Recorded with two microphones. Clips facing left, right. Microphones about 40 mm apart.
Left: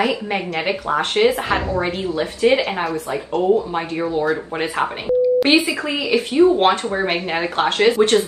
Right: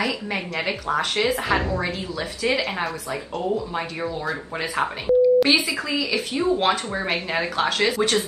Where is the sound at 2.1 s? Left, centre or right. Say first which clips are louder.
Left 8 dB; left.